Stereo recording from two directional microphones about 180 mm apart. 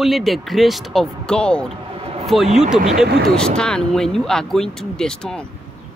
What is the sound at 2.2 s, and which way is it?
Speech, centre (ahead or behind).